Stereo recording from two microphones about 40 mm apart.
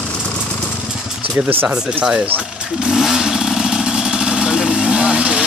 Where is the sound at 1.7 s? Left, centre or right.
Right.